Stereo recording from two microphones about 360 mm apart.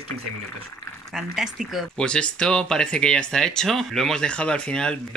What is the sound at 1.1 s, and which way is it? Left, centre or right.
Speech, centre.